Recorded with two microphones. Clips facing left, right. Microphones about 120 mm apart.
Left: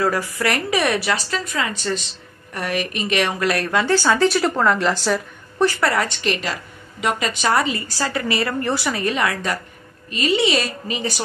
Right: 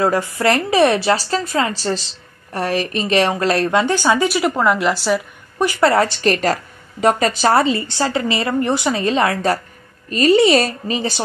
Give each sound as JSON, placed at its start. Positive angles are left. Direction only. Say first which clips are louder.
{"t": 0.0, "sound": "a woman's voice", "louder": "right 4 dB", "side_deg": -25}
{"t": 5.8, "sound": "a woman's voice", "louder": "right 6 dB", "side_deg": -30}